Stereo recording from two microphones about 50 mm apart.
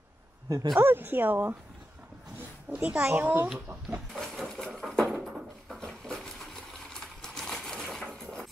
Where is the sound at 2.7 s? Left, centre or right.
Right.